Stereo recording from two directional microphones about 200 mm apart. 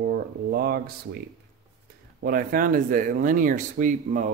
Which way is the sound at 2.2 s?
45° right (ahead or behind).